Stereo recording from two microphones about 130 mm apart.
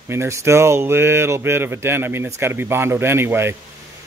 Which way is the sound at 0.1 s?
20° right (ahead or behind).